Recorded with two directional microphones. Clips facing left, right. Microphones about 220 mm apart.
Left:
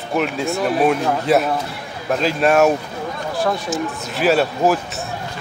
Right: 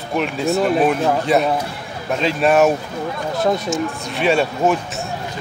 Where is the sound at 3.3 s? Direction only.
20° right (ahead or behind).